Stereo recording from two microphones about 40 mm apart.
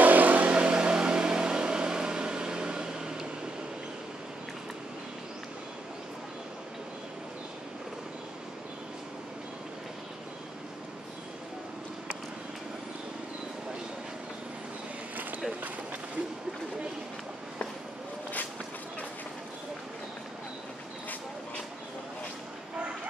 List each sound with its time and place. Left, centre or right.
0.0 s vehicle: right
0.5 s vehicle: right